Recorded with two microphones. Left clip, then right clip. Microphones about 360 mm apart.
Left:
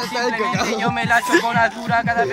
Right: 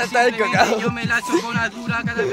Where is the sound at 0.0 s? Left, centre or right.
Right.